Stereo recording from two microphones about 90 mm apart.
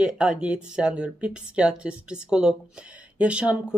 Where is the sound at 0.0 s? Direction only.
10° right (ahead or behind).